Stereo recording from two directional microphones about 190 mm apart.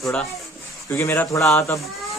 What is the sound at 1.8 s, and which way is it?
Speech, centre (ahead or behind).